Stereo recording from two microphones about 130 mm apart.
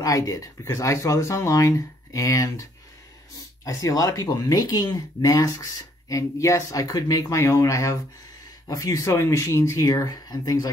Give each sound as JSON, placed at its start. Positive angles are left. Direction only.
{"t": 0.0, "sound": "speech", "side_deg": 25}
{"t": 3.6, "sound": "speech", "side_deg": 25}